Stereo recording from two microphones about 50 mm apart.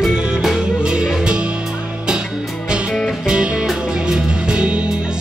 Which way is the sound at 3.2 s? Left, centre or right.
Centre.